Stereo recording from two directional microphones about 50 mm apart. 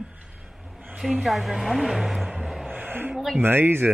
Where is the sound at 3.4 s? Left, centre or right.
Right.